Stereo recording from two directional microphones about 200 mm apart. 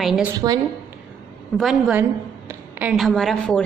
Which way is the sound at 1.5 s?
Centre (ahead or behind).